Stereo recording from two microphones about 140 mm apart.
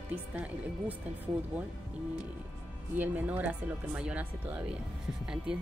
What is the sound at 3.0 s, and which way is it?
Speech, 10° right (ahead or behind).